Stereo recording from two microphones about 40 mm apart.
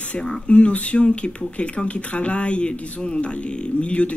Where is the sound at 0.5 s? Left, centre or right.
Left.